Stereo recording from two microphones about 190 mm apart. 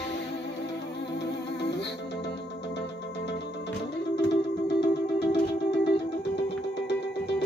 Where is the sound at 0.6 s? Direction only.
65° left (ahead or behind).